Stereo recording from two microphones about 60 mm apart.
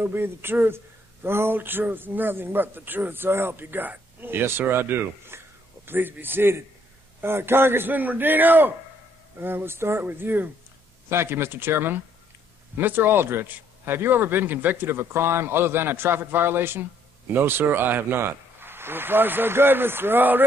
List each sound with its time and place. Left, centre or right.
0.0 s speech: right